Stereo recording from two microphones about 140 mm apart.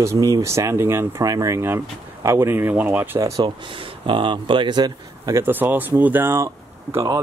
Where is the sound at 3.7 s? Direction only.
40° right (ahead or behind).